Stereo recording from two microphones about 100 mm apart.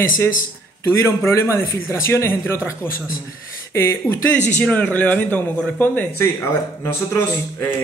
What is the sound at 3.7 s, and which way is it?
Speech, 25° left (ahead or behind).